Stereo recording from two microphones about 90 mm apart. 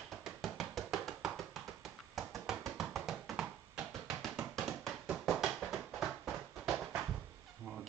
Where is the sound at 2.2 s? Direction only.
Centre (ahead or behind).